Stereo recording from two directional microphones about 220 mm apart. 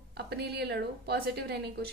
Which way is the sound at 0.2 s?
50° right (ahead or behind).